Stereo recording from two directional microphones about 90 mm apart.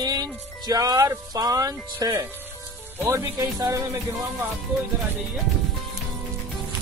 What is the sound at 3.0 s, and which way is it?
Music, 30° right (ahead or behind).